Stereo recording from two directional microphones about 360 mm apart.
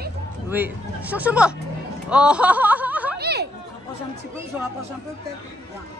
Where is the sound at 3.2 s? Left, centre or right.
Right.